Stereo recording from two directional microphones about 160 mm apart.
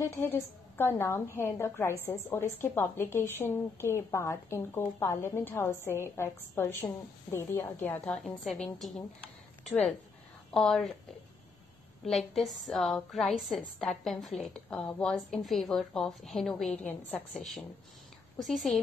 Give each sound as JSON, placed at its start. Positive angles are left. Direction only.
{"t": 0.0, "sound": "a woman's voice", "side_deg": 15}
{"t": 10.5, "sound": "a woman's voice", "side_deg": 5}
{"t": 12.0, "sound": "a woman's voice", "side_deg": 0}
{"t": 18.4, "sound": "a woman's voice", "side_deg": 0}